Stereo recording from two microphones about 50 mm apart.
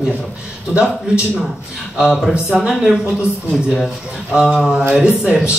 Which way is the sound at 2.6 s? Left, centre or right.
Centre.